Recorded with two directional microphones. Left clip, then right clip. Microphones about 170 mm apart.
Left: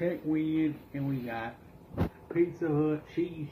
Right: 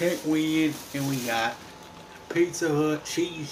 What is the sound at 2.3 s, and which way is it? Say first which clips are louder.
Speech: right 5 dB; 20° right (ahead or behind).